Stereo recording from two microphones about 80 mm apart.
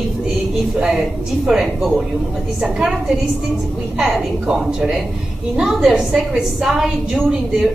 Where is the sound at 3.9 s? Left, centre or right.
Centre.